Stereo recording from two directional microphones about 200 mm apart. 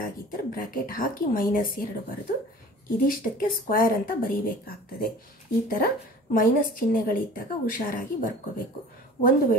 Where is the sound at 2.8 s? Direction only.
45° left (ahead or behind).